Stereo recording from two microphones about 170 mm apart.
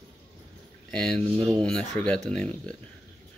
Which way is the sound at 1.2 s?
35° right (ahead or behind).